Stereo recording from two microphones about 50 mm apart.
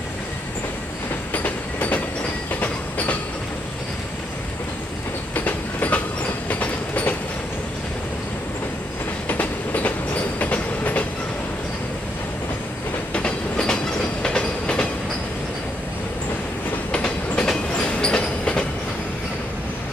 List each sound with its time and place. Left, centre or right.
1.3 s train: left
5.3 s train: left
9.3 s train: left
13.1 s train: centre
16.9 s train: centre